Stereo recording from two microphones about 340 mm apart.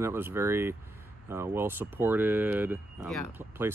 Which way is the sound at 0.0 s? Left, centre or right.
Centre.